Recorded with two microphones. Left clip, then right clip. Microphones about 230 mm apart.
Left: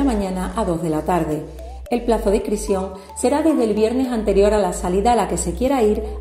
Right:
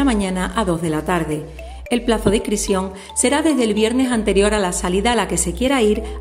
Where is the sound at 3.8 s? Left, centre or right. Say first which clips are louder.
Right 1 dB; right.